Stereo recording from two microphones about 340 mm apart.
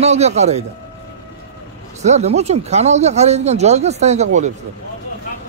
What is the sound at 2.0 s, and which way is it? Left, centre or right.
Speech, centre.